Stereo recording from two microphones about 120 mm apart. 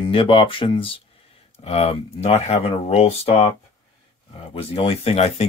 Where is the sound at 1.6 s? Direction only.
60° left (ahead or behind).